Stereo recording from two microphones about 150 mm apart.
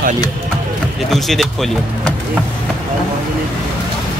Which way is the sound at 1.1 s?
Centre (ahead or behind).